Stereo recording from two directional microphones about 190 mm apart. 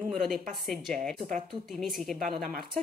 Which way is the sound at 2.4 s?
50° right (ahead or behind).